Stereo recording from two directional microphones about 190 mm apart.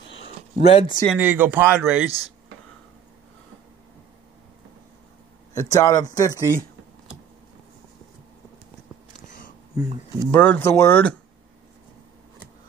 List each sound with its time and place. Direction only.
0.1 s a sound: 80° left
0.7 s speech: 30° left (ahead or behind)
1.1 s speech: 10° right (ahead or behind)
5.5 s speech: 15° left (ahead or behind)
9.3 s a sound: 45° left (ahead or behind)
10.3 s speech: 5° left (ahead or behind)